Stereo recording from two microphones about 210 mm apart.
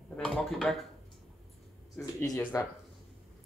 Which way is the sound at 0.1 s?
5° left (ahead or behind).